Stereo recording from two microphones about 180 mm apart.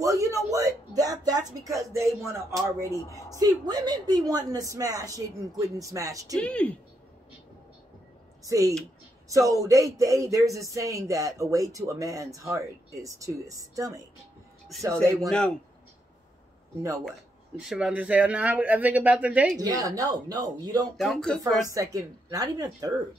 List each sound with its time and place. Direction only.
0.0 s a woman's voice: 20° right (ahead or behind)
6.3 s speech: 5° left (ahead or behind)
8.5 s a woman's voice: 20° right (ahead or behind)
15.2 s speech: 5° left (ahead or behind)
17.6 s speech: 5° right (ahead or behind)
19.6 s a woman's voice: 20° right (ahead or behind)
21.0 s speech: centre (ahead or behind)
21.7 s a woman's voice: 20° right (ahead or behind)